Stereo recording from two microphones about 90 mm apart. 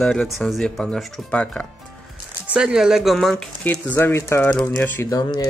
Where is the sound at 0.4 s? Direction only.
Centre (ahead or behind).